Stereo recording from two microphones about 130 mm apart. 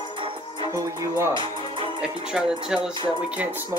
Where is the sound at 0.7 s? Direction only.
20° right (ahead or behind).